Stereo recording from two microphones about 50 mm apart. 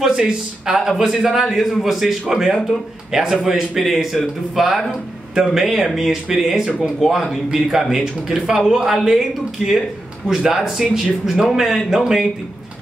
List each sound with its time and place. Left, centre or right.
0.0 s a man's voice: centre